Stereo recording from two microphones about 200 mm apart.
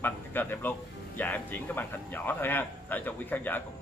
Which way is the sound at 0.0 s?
10° left (ahead or behind).